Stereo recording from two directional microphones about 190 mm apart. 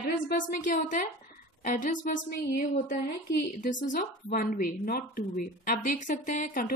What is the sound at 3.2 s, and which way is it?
A woman's voice, 55° left (ahead or behind).